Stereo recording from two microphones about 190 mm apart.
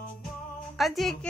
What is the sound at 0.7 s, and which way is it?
Speech, centre (ahead or behind).